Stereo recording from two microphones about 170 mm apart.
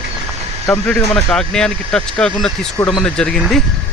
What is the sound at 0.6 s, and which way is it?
Speech, 5° left (ahead or behind).